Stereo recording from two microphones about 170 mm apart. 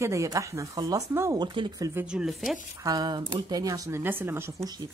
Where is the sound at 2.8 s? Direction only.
25° right (ahead or behind).